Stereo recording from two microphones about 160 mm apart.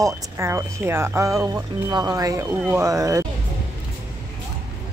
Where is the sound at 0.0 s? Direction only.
20° right (ahead or behind).